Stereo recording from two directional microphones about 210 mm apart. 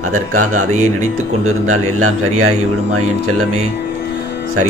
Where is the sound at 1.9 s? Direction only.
90° right.